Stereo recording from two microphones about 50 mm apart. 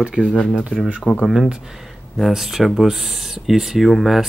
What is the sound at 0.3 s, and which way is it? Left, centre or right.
Speech, centre.